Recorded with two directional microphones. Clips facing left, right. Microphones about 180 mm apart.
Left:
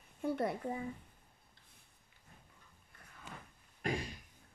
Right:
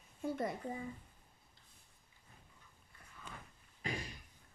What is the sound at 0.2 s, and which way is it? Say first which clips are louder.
Speech: left 3 dB; 60° left (ahead or behind).